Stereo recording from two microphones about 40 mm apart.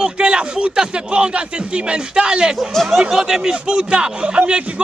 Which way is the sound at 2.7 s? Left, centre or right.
Centre.